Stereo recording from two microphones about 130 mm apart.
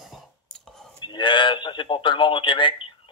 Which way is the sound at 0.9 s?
35° left (ahead or behind).